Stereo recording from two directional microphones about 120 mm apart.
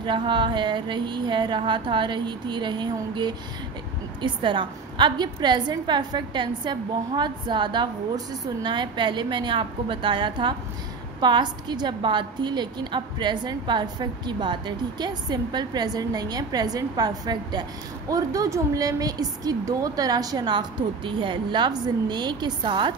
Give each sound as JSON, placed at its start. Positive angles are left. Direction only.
{"t": 0.0, "sound": "a woman's voice", "side_deg": -40}